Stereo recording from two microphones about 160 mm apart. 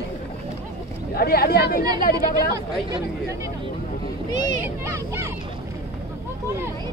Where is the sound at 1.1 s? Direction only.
75° left (ahead or behind).